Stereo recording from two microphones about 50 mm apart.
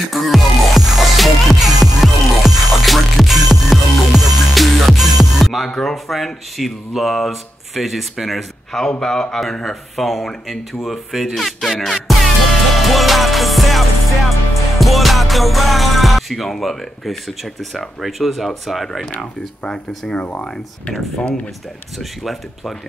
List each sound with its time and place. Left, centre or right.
0.1 s music: centre
5.7 s speech: centre
8.8 s speech: centre
12.7 s music: centre
20.2 s speech: left
21.9 s speech: centre